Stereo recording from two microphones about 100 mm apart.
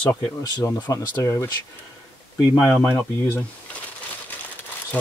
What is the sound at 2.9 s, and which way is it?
Speech, 25° left (ahead or behind).